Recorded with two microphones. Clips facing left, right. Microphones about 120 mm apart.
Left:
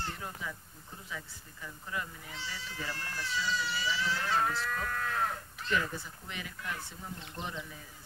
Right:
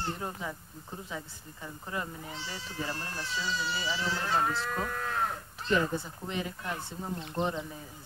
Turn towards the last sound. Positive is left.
turn(degrees=-35)  # may be behind; listen again after turning